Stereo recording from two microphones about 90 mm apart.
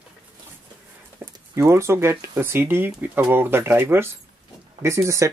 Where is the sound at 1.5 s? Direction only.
30° right (ahead or behind).